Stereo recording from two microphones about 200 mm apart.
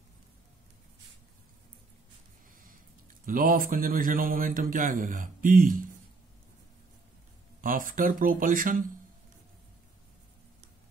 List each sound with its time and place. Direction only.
3.3 s speech: 45° right (ahead or behind)
7.6 s speech: 45° right (ahead or behind)